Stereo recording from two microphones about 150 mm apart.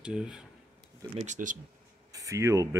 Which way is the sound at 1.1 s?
55° right (ahead or behind).